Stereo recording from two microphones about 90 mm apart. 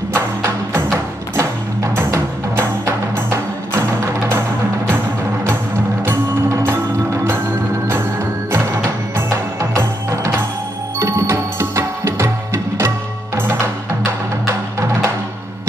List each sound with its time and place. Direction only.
0.1 s music: 30° right (ahead or behind)
2.0 s music: 30° right (ahead or behind)
6.0 s music: 25° right (ahead or behind)
9.6 s music: 35° right (ahead or behind)
13.4 s music: 30° right (ahead or behind)